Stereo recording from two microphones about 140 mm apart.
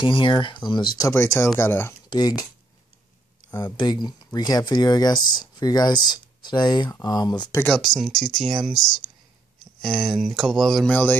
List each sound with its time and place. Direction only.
0.0 s speech: 35° left (ahead or behind)
0.9 s speech: 20° left (ahead or behind)
2.0 s speech: 30° left (ahead or behind)
3.4 s speech: 30° left (ahead or behind)
7.5 s speech: 10° left (ahead or behind)